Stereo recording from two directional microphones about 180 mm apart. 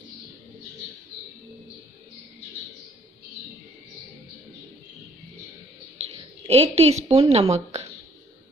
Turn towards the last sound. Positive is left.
turn(degrees=-35)  # may be behind; listen again after turning